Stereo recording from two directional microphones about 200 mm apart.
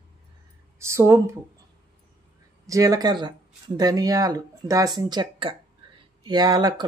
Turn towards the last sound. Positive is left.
turn(degrees=-20)  # may be behind; listen again after turning